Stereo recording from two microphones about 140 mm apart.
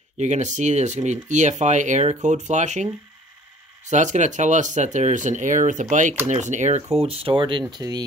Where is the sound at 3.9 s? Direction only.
60° right (ahead or behind).